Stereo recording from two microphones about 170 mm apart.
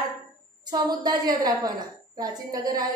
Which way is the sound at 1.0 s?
25° right (ahead or behind).